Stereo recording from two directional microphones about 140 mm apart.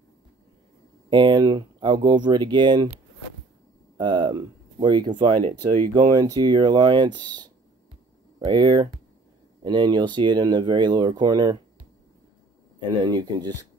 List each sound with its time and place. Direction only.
1.1 s speech: 35° right (ahead or behind)
4.0 s speech: 35° right (ahead or behind)
5.9 s speech: 30° right (ahead or behind)
13.0 s speech: 30° right (ahead or behind)